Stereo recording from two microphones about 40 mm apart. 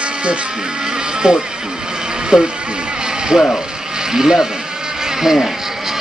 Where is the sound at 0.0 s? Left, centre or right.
Right.